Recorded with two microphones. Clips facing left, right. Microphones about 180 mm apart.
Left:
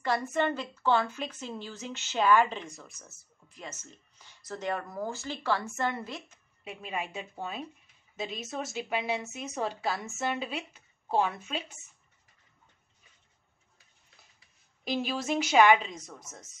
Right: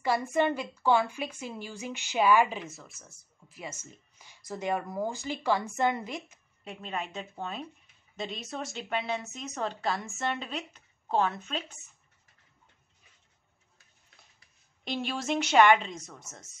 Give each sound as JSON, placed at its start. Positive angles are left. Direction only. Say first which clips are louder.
{"t": 0.0, "sound": "a woman's voice", "louder": "right 2 dB", "side_deg": -10}
{"t": 6.6, "sound": "a woman's voice", "louder": "even", "side_deg": 5}
{"t": 14.9, "sound": "a woman's voice", "louder": "left 1 dB", "side_deg": 5}